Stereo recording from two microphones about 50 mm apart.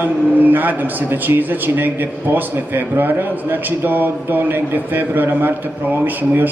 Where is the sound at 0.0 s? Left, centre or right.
Right.